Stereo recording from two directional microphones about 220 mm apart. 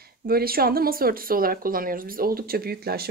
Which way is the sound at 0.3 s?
45° right (ahead or behind).